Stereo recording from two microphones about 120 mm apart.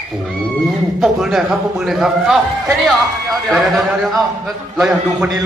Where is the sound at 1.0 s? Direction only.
5° right (ahead or behind).